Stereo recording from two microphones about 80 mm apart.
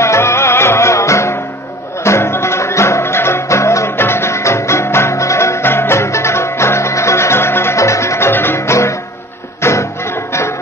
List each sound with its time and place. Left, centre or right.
0.0 s music: left